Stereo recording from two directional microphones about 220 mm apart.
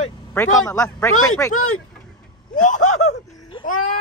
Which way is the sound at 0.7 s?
15° left (ahead or behind).